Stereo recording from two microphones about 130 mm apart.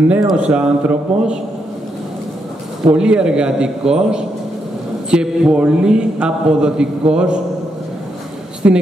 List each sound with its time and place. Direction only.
0.3 s a man's voice: 5° right (ahead or behind)
2.9 s a man's voice: 5° right (ahead or behind)
8.6 s a man's voice: 15° right (ahead or behind)